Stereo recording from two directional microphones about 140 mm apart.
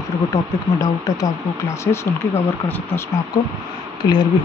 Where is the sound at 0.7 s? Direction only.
25° left (ahead or behind).